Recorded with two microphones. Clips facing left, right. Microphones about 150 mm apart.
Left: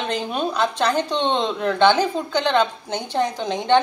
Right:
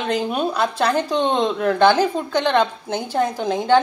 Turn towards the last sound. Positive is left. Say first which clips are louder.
# right 2 dB
turn(degrees=-5)  # may be behind; listen again after turning